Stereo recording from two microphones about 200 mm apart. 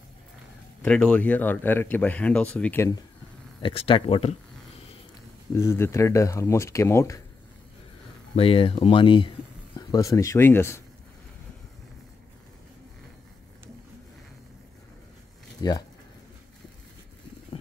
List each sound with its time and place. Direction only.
0.8 s speech: 5° left (ahead or behind)
3.6 s speech: 25° left (ahead or behind)
5.5 s speech: 10° left (ahead or behind)
8.4 s speech: 30° left (ahead or behind); by 10.8 s 10° left (ahead or behind)
15.6 s speech: 20° left (ahead or behind)